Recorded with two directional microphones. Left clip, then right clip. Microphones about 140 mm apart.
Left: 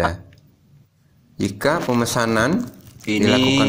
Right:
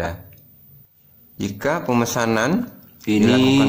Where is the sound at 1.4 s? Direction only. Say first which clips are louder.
Left 3 dB; 15° left (ahead or behind).